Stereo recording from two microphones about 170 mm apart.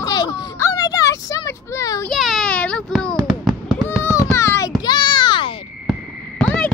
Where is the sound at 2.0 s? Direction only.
Centre (ahead or behind).